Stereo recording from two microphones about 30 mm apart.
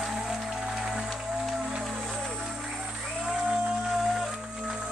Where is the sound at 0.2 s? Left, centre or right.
Centre.